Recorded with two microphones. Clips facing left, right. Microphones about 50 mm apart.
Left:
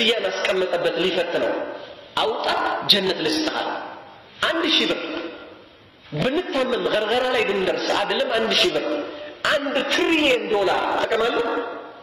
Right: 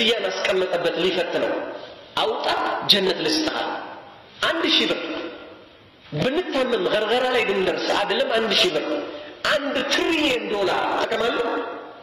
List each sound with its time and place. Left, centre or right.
0.0 s a man's voice: centre
9.4 s a woman's voice: centre